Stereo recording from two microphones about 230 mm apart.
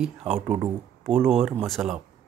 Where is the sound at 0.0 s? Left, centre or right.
Centre.